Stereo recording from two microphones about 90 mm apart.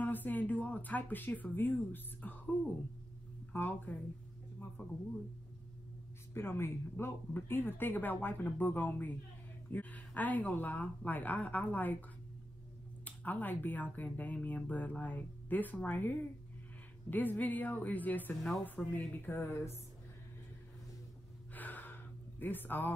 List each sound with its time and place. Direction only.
0.0 s speech: 20° left (ahead or behind)
3.5 s speech: 20° left (ahead or behind)
6.3 s speech: 25° left (ahead or behind)
13.0 s speech: 20° left (ahead or behind)
18.4 s speech: 5° left (ahead or behind)
18.9 s speech: 20° left (ahead or behind)
21.5 s gasp: 20° left (ahead or behind)